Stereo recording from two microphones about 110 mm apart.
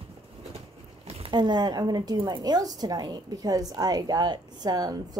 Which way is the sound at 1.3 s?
40° right (ahead or behind).